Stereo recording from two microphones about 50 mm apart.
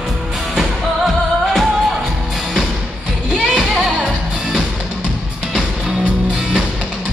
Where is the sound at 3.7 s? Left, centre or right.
Centre.